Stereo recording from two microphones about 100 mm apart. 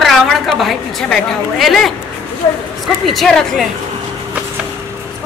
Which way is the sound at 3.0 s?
Centre (ahead or behind).